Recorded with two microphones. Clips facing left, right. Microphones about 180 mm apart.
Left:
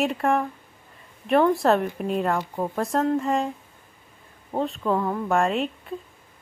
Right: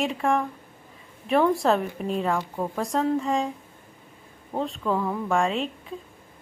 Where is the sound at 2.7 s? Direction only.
Centre (ahead or behind).